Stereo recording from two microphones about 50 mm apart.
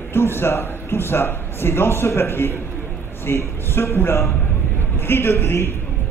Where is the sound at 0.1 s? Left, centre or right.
Left.